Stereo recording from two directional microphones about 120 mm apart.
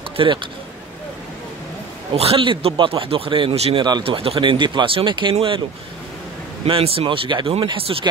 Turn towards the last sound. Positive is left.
turn(degrees=-45)  # may be behind; listen again after turning